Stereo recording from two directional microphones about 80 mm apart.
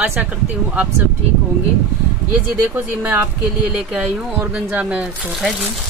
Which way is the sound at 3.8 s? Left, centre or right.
Centre.